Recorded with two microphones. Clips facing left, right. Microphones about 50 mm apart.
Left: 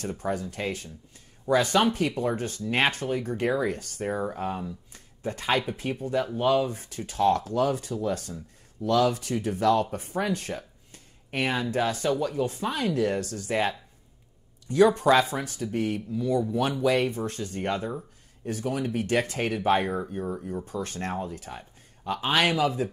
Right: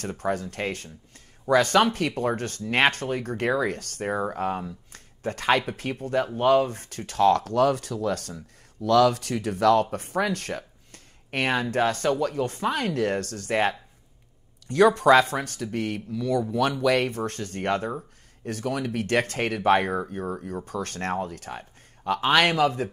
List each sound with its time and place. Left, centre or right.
0.2 s speech: right